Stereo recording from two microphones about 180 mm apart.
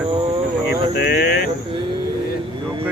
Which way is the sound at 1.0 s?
55° left (ahead or behind).